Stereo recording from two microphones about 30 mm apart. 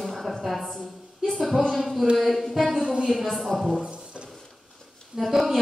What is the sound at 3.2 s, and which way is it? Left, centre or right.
Speech, centre.